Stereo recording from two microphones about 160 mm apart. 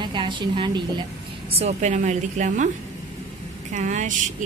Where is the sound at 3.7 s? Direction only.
50° right (ahead or behind).